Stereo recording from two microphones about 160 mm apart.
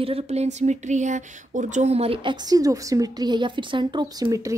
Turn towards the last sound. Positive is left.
turn(degrees=-20)  # may be behind; listen again after turning